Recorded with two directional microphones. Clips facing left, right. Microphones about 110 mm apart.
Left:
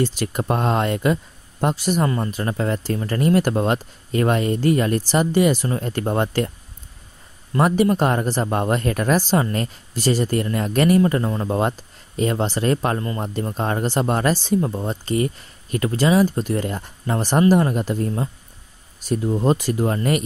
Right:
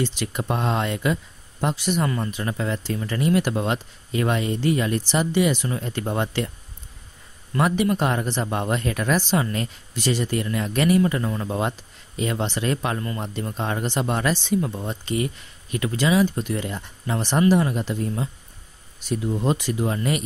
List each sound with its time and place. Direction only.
0.0 s speech: 45° left (ahead or behind)
7.5 s speech: 40° left (ahead or behind)